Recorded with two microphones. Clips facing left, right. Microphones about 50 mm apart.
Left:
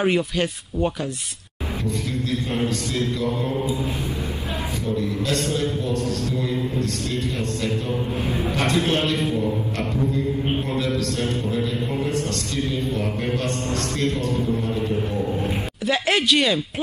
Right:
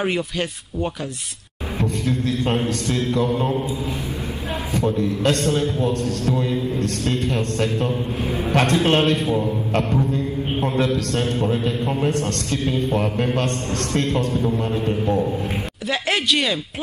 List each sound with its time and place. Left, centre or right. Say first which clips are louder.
0.0 s speech: left 2 dB; centre
2.4 s a man's voice: right 3 dB; right
4.7 s a man's voice: right 5 dB; right
8.2 s a man's voice: right 1 dB; right
8.5 s a man's voice: right 5 dB; right
11.0 s a man's voice: right 3 dB; right
15.9 s speech: left 1 dB; centre